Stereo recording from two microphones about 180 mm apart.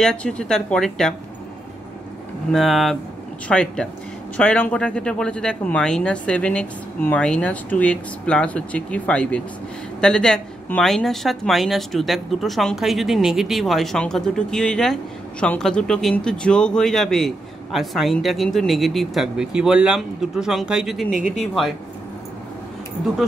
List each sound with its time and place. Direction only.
0.0 s speech: 5° left (ahead or behind)
2.5 s speech: centre (ahead or behind)
21.1 s speech: 45° left (ahead or behind)